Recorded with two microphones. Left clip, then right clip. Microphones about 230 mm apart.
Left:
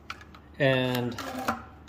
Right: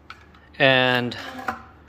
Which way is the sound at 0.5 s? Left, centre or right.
Centre.